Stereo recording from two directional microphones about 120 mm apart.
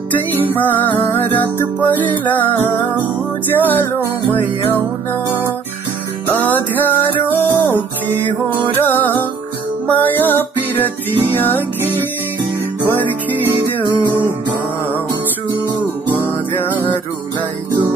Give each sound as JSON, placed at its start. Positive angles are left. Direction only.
{"t": 0.1, "sound": "music", "side_deg": 15}
{"t": 3.4, "sound": "music", "side_deg": 15}
{"t": 6.2, "sound": "music", "side_deg": 15}
{"t": 15.5, "sound": "music", "side_deg": -40}
{"t": 16.1, "sound": "music", "side_deg": 15}